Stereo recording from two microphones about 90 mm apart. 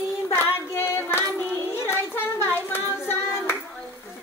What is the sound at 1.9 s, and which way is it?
Clapping, 25° left (ahead or behind).